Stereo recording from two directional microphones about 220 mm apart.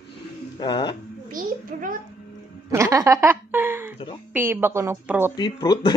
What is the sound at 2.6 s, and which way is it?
A woman's voice, 15° right (ahead or behind).